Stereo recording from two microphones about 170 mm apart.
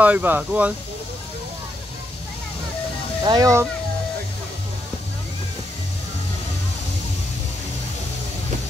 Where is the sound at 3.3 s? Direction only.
20° right (ahead or behind).